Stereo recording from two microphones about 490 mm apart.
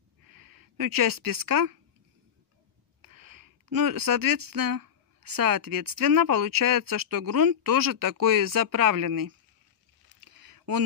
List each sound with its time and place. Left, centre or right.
0.3 s a woman's voice: right
3.0 s speech: right
10.3 s a sound: right